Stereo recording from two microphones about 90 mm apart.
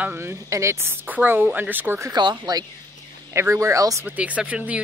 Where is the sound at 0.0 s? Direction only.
25° right (ahead or behind).